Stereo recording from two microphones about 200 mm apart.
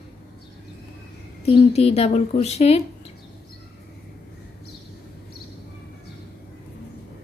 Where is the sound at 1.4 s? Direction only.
30° left (ahead or behind).